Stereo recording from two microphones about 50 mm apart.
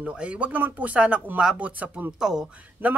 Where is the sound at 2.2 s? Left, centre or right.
Centre.